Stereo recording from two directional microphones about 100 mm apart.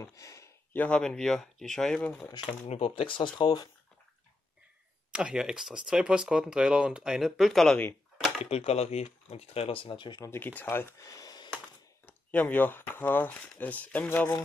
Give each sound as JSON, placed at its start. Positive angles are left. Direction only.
{"t": 0.0, "sound": "a sound", "side_deg": 35}
{"t": 0.7, "sound": "speech", "side_deg": 10}
{"t": 2.4, "sound": "speech", "side_deg": 90}
{"t": 5.1, "sound": "speech", "side_deg": -10}
{"t": 8.5, "sound": "speech", "side_deg": 90}
{"t": 10.2, "sound": "speech", "side_deg": 20}
{"t": 11.1, "sound": "a sound", "side_deg": 40}
{"t": 12.1, "sound": "speech", "side_deg": 15}